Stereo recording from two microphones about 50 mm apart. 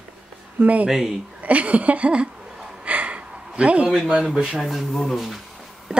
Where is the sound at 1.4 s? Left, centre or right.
Right.